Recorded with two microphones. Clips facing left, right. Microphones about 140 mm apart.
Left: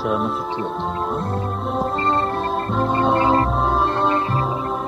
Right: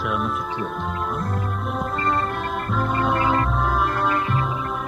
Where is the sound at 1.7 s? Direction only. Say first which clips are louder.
Left 3 dB; 30° left (ahead or behind).